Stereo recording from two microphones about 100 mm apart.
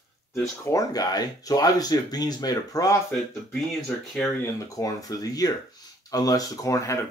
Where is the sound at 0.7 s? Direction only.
35° left (ahead or behind).